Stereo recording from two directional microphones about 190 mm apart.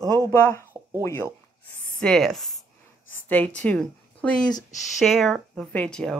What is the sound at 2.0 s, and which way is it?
Speech, centre (ahead or behind).